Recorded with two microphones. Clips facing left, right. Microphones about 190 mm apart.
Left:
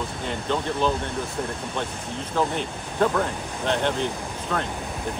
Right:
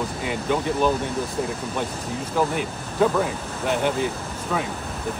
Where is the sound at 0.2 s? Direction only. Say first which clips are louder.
Right 2 dB; 10° right (ahead or behind).